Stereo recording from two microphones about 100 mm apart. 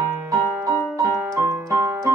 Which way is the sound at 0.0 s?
30° right (ahead or behind).